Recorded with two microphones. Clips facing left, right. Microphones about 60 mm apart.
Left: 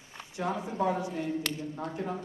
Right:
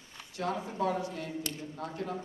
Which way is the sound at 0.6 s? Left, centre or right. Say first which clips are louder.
Left 2 dB; left.